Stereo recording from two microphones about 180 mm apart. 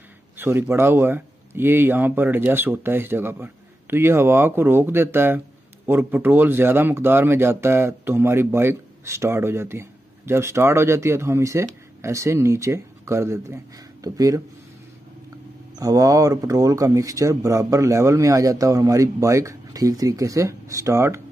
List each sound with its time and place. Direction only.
0.4 s speech: 15° right (ahead or behind)
15.8 s speech: 20° right (ahead or behind)